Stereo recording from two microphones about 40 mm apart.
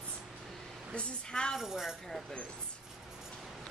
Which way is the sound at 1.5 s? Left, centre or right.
Centre.